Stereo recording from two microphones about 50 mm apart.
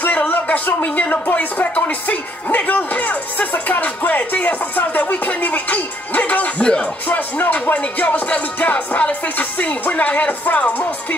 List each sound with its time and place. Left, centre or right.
0.0 s speech: left
6.6 s music: centre
7.1 s speech: left